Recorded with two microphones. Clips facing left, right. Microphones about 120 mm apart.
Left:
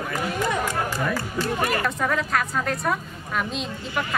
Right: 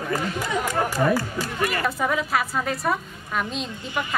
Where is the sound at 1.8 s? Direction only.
5° right (ahead or behind).